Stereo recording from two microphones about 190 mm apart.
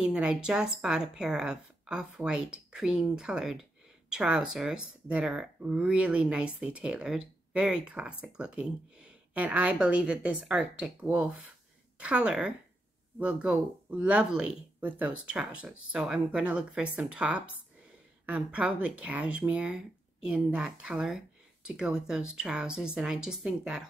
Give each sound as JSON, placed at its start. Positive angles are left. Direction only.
{"t": 0.0, "sound": "speech", "side_deg": -5}